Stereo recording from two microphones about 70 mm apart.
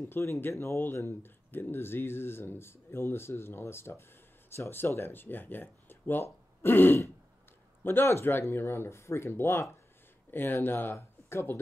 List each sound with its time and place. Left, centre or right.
0.0 s speech: left